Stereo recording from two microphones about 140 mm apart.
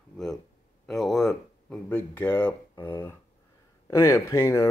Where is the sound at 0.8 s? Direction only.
Centre (ahead or behind).